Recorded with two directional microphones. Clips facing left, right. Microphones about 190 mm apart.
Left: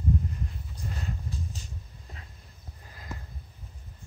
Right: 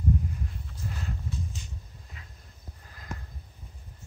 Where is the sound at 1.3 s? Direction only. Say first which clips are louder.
Right 1 dB; 35° left (ahead or behind).